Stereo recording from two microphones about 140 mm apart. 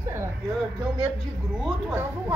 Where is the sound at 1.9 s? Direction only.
15° right (ahead or behind).